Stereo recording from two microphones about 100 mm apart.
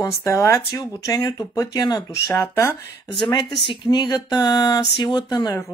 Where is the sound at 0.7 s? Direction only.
45° left (ahead or behind).